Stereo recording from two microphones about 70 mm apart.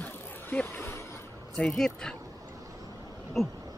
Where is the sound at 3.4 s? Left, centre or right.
Centre.